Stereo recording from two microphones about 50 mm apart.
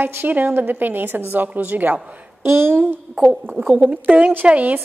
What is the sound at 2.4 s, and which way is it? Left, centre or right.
Speech, right.